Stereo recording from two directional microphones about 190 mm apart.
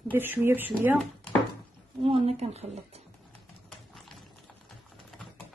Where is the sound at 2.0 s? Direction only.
25° right (ahead or behind).